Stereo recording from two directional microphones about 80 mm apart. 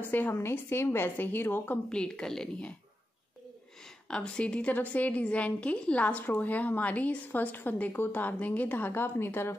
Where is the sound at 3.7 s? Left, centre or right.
Centre.